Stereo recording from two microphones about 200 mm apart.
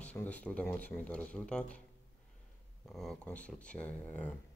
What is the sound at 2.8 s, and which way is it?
Speech, centre (ahead or behind).